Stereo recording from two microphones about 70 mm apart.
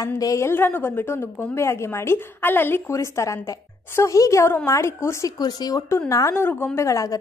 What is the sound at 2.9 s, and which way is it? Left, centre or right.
A woman's voice, left.